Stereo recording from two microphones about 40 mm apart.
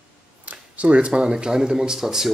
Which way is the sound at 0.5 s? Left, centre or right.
Right.